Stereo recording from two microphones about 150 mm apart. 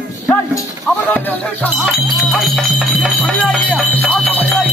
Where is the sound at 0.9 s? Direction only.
15° left (ahead or behind).